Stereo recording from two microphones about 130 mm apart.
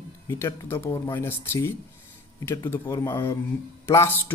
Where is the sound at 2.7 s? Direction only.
25° left (ahead or behind).